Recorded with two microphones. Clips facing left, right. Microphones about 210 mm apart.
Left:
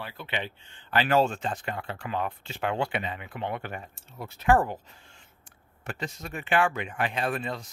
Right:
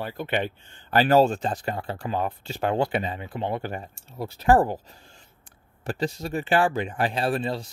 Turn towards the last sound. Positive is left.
turn(degrees=-30)  # may be behind; listen again after turning